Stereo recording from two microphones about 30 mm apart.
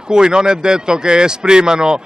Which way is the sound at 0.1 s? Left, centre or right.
Right.